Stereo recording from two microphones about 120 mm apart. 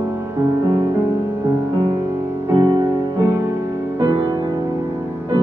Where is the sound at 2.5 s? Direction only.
35° right (ahead or behind).